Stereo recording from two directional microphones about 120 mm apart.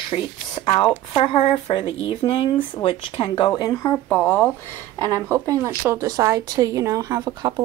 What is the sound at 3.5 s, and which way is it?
Speech, 35° left (ahead or behind).